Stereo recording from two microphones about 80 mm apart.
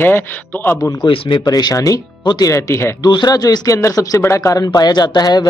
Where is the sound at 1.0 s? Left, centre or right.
Left.